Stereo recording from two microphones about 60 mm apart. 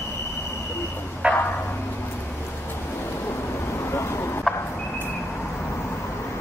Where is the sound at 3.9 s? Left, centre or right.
Left.